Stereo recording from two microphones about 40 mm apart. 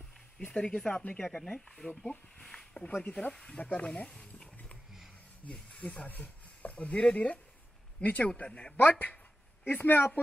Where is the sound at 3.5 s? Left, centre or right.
Left.